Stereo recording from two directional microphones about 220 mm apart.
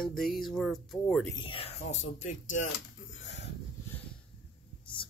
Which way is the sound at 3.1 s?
55° left (ahead or behind).